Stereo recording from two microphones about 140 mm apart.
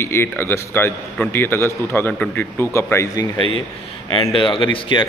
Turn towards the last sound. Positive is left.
turn(degrees=35)  # may be behind; listen again after turning